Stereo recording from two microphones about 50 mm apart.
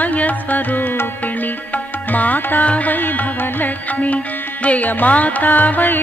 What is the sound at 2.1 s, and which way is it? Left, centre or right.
Music, left.